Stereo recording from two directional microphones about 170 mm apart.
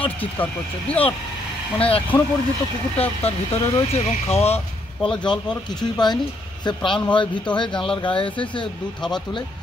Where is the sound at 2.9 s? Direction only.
35° left (ahead or behind).